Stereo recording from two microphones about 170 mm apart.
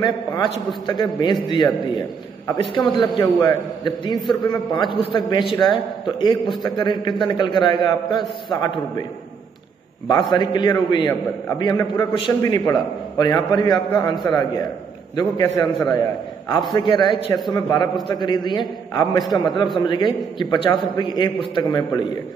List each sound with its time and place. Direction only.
0.0 s a man's voice: 25° left (ahead or behind)
10.3 s a man's voice: 25° left (ahead or behind)